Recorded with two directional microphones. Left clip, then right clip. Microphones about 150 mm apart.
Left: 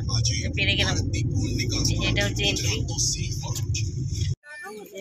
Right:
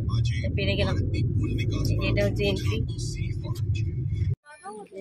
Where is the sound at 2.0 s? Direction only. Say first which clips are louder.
Right 1 dB; 10° right (ahead or behind).